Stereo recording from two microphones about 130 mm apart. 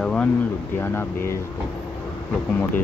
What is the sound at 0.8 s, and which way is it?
Speech, 20° left (ahead or behind).